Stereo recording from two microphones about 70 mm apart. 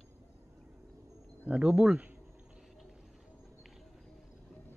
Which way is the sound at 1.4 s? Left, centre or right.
Centre.